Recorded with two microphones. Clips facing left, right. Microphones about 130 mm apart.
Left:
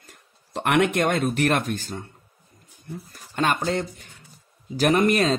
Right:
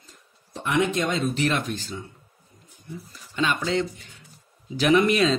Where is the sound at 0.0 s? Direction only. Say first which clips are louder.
Left 1 dB; 70° left (ahead or behind).